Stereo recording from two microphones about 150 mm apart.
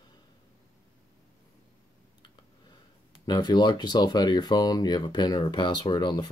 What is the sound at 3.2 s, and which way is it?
Speech, 30° left (ahead or behind).